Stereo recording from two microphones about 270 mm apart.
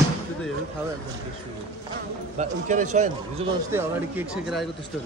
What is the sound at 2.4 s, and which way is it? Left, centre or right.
Speech, right.